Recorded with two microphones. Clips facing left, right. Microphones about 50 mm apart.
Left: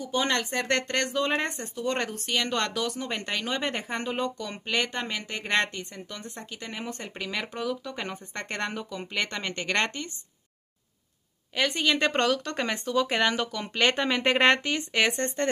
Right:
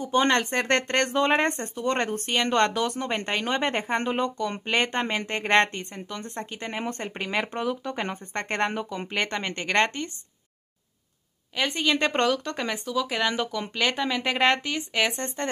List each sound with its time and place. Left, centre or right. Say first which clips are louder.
0.0 s speech: right 5 dB; right
1.8 s speech: right 2 dB; right
11.6 s speech: right 1 dB; centre
12.5 s speech: left 1 dB; centre